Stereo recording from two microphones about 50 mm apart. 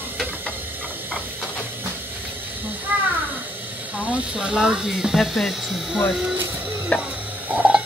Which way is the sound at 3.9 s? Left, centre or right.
Right.